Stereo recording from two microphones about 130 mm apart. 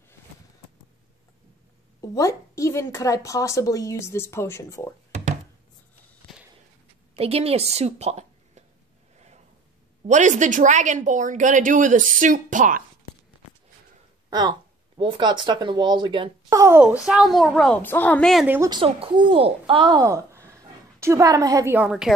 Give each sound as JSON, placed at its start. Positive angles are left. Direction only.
{"t": 2.0, "sound": "a woman's voice", "side_deg": 25}
{"t": 7.2, "sound": "a woman's voice", "side_deg": -50}
{"t": 10.0, "sound": "speech", "side_deg": -70}
{"t": 15.0, "sound": "speech", "side_deg": -35}
{"t": 16.4, "sound": "speech", "side_deg": -25}
{"t": 16.8, "sound": "a child's voice", "side_deg": -10}
{"t": 17.8, "sound": "a woman's voice", "side_deg": 15}
{"t": 18.7, "sound": "speech", "side_deg": -45}
{"t": 20.0, "sound": "a sound", "side_deg": -25}
{"t": 21.7, "sound": "a woman's voice", "side_deg": -5}